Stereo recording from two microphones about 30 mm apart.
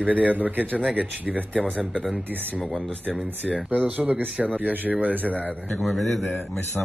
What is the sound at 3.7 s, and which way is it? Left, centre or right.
Speech, right.